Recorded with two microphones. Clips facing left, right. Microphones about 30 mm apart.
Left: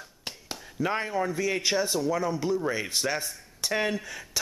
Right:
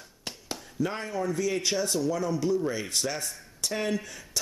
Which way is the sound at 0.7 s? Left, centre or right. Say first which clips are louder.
Left 3 dB; left.